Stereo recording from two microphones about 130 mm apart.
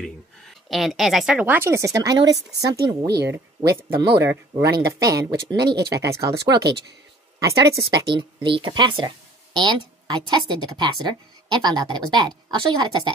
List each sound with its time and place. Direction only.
0.7 s speech: centre (ahead or behind); by 3.1 s 30° right (ahead or behind)
3.3 s speech: 15° right (ahead or behind)
8.1 s a woman's voice: 40° right (ahead or behind)